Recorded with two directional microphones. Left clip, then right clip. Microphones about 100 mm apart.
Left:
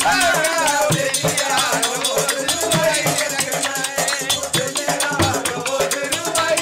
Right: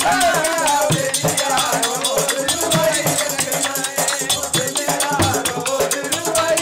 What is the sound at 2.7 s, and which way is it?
Music, 5° right (ahead or behind).